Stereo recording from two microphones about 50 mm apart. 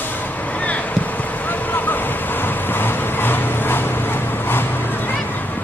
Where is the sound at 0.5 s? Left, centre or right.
Left.